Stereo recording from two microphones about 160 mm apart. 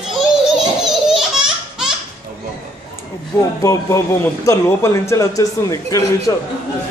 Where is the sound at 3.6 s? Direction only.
20° left (ahead or behind).